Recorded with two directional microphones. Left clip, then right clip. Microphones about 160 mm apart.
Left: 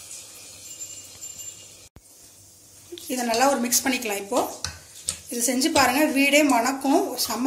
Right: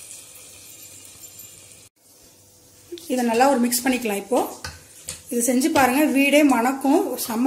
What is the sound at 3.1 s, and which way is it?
Speech, 55° right (ahead or behind).